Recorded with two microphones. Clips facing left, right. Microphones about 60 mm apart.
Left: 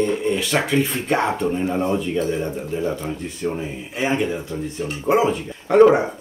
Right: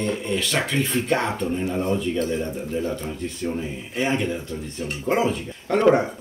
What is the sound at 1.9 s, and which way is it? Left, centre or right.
Speech, centre.